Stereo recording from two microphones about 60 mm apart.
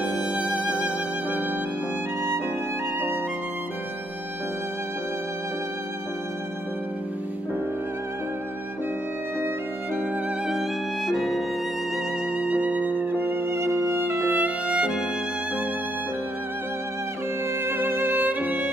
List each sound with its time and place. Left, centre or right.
0.1 s music: centre
11.1 s music: centre
12.4 s violin: right
14.7 s music: centre
17.6 s music: right